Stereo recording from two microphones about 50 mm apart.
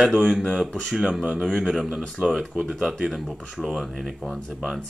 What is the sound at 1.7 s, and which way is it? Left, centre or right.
Speech, centre.